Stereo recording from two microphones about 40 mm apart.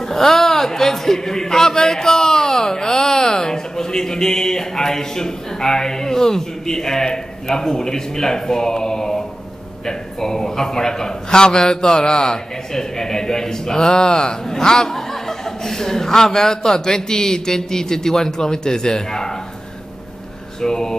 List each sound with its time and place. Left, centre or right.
0.1 s a man's voice: centre
20.6 s a man's voice: centre